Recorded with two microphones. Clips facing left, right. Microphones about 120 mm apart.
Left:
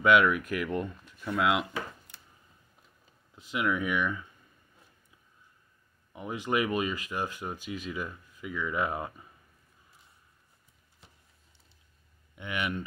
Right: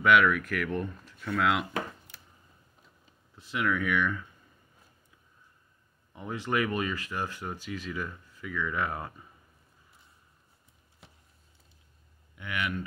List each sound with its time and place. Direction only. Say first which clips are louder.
0.0 s speech: even; 20° left (ahead or behind)
3.3 s speech: even; 15° left (ahead or behind)
6.1 s speech: left 1 dB; 15° left (ahead or behind)
12.4 s speech: even; 25° left (ahead or behind)